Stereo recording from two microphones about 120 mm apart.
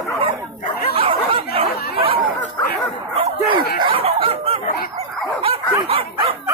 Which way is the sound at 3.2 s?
45° right (ahead or behind).